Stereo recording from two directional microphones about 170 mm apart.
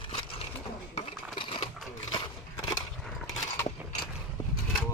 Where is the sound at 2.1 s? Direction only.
25° left (ahead or behind).